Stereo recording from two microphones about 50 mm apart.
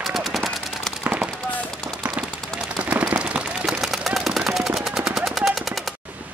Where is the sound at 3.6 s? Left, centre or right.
Centre.